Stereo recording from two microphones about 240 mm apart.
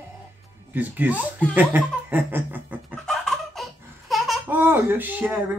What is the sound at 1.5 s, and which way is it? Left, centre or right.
Fowl, centre.